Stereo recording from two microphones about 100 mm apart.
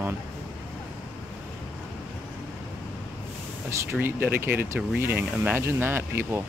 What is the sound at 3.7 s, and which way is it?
Speech, 25° right (ahead or behind).